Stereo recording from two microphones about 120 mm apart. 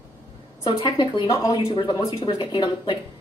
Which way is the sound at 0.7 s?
40° left (ahead or behind).